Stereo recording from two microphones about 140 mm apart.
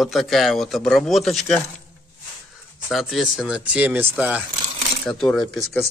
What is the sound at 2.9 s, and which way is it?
Speech, centre (ahead or behind).